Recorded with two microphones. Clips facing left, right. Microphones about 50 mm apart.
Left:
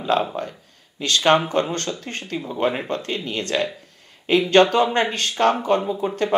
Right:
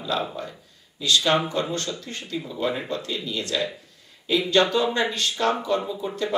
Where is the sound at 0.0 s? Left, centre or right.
Left.